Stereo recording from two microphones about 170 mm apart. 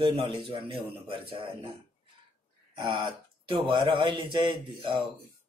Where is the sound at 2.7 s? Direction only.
30° right (ahead or behind).